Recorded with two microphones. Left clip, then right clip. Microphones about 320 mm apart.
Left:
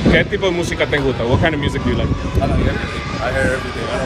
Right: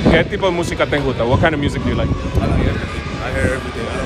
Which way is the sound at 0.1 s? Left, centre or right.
Right.